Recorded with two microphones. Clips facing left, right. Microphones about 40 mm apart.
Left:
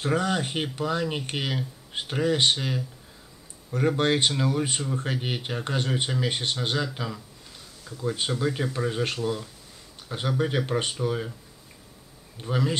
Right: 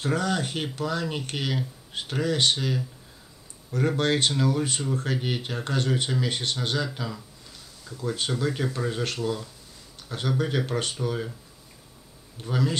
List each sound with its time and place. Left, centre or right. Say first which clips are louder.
0.0 s speech: left 1 dB; left
3.7 s speech: left 1 dB; left
8.8 s speech: left 3 dB; centre
12.4 s speech: even; centre